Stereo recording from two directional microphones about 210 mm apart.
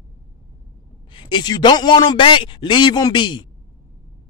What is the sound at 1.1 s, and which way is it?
A man's voice, 20° left (ahead or behind).